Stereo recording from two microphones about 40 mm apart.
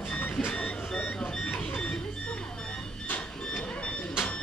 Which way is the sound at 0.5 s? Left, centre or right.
Left.